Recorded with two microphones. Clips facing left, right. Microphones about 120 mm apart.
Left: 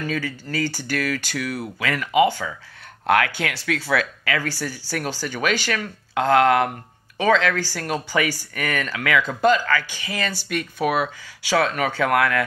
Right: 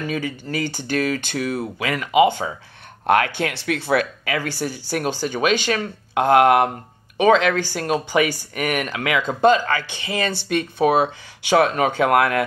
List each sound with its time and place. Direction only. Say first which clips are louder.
0.0 s speech: right 1 dB; 20° right (ahead or behind)